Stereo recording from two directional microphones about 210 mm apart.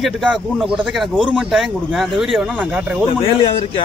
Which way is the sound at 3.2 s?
25° left (ahead or behind).